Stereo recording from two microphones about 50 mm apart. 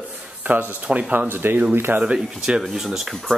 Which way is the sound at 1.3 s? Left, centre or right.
Right.